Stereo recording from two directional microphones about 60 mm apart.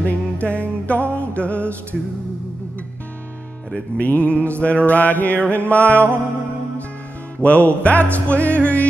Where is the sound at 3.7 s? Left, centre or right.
Left.